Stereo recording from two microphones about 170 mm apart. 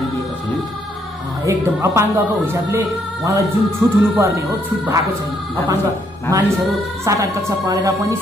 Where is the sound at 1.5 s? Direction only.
15° right (ahead or behind).